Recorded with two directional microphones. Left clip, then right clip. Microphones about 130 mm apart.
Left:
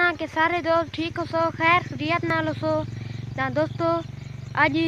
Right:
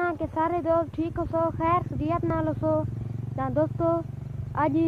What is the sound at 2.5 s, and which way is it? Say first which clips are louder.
Speech: left 1 dB; 35° left (ahead or behind).